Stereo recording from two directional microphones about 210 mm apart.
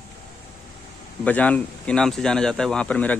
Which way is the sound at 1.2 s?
5° left (ahead or behind).